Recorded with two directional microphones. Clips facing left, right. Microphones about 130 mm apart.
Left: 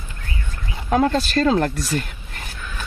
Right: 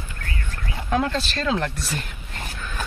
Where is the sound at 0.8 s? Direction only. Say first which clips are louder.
Left 5 dB; 40° left (ahead or behind).